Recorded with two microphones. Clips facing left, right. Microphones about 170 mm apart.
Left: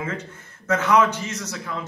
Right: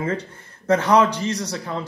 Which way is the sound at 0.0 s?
35° right (ahead or behind).